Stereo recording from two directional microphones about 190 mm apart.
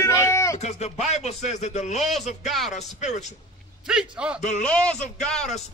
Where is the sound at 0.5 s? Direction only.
35° left (ahead or behind).